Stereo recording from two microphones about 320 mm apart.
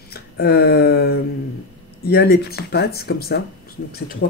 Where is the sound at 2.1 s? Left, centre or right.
Left.